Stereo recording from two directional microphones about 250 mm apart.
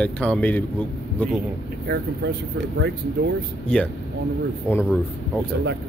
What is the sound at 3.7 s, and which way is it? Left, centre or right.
Speech, centre.